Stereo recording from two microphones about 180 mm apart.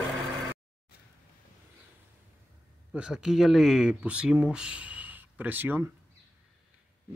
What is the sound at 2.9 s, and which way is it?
Speech, 5° right (ahead or behind).